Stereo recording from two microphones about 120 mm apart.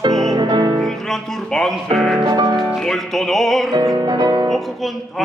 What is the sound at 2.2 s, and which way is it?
Music, 35° right (ahead or behind).